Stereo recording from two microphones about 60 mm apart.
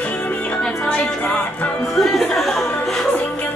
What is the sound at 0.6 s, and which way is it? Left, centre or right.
Music, centre.